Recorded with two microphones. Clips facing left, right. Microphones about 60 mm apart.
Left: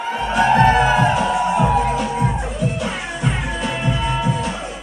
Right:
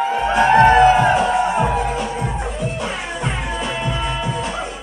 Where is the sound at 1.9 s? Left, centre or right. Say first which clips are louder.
Left 3 dB; centre.